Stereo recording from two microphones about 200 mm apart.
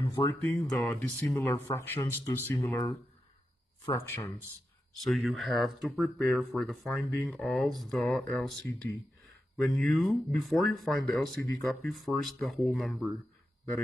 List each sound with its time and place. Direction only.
0.1 s speech: 15° left (ahead or behind)
5.0 s speech: centre (ahead or behind)
9.6 s speech: centre (ahead or behind)